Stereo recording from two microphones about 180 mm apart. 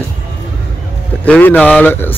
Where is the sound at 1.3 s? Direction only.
10° left (ahead or behind).